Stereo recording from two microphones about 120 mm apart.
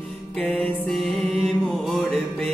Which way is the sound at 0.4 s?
5° left (ahead or behind).